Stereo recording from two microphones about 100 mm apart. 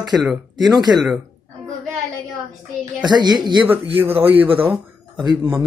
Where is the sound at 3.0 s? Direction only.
45° right (ahead or behind).